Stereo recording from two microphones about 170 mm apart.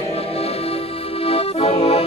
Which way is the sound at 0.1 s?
35° left (ahead or behind).